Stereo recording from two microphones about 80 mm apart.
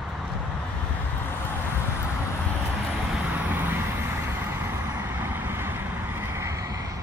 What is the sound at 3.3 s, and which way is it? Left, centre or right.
Vehicle, right.